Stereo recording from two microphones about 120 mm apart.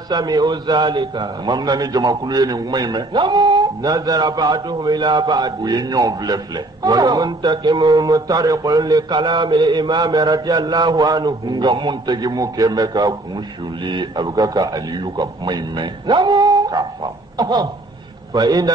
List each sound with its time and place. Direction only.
0.1 s a man's voice: 35° right (ahead or behind)